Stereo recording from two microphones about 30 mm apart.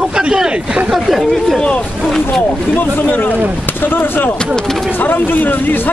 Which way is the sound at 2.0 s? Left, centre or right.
Centre.